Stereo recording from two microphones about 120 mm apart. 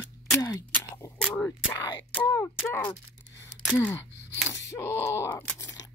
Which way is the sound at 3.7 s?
20° left (ahead or behind).